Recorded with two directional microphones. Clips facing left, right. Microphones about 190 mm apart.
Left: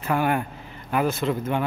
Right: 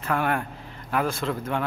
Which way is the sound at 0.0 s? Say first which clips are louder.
Left 2 dB; 5° left (ahead or behind).